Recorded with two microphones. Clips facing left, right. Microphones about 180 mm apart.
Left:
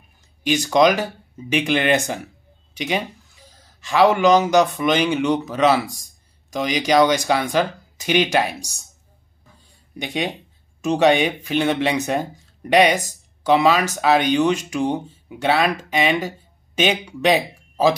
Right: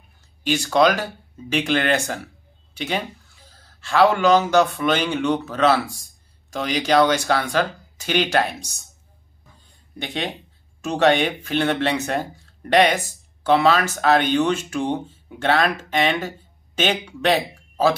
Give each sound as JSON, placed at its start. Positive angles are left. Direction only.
{"t": 0.4, "sound": "speech", "side_deg": 15}
{"t": 9.9, "sound": "speech", "side_deg": 15}